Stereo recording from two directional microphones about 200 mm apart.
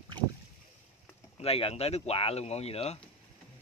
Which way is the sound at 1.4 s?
30° left (ahead or behind).